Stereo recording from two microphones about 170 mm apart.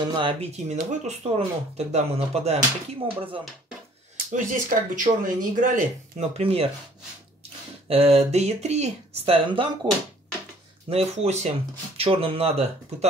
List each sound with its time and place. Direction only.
0.0 s speech: 30° right (ahead or behind)
4.3 s speech: 50° right (ahead or behind)
7.9 s speech: 35° right (ahead or behind)
10.9 s speech: 40° right (ahead or behind)